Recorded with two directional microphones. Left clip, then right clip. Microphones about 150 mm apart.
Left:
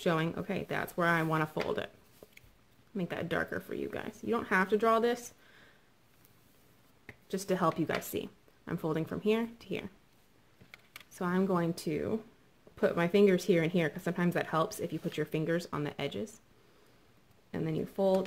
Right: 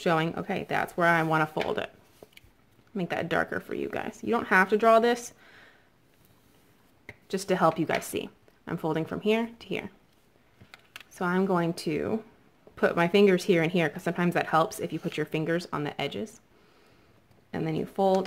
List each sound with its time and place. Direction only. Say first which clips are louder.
0.0 s speech: right 5 dB; 5° right (ahead or behind)
2.2 s a sound: right 4 dB; 10° right (ahead or behind)
2.9 s speech: right 6 dB; 15° right (ahead or behind)
7.2 s speech: right 6 dB; 15° right (ahead or behind)
11.1 s speech: right 5 dB; 5° right (ahead or behind)
17.5 s speech: right 5 dB; 10° right (ahead or behind)